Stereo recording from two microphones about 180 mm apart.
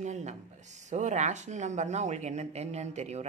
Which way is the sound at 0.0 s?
40° right (ahead or behind).